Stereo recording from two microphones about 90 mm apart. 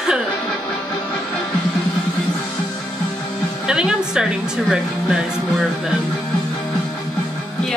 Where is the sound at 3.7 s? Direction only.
10° right (ahead or behind).